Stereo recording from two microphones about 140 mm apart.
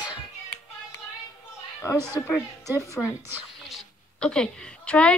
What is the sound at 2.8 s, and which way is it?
Speech, 20° left (ahead or behind).